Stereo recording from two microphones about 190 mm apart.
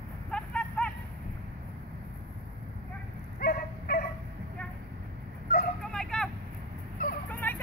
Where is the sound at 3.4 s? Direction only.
55° left (ahead or behind).